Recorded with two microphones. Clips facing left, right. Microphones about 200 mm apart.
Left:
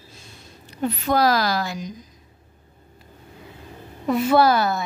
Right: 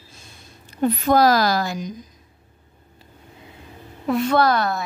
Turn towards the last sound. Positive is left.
turn(degrees=5)  # may be behind; listen again after turning